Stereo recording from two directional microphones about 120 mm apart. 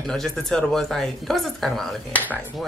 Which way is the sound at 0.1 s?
5° left (ahead or behind).